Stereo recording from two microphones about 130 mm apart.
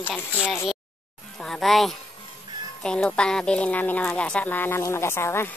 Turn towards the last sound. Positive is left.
turn(degrees=20)  # may be behind; listen again after turning